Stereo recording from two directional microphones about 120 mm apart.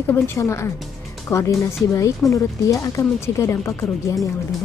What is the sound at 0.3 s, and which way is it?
A woman's voice, 25° left (ahead or behind).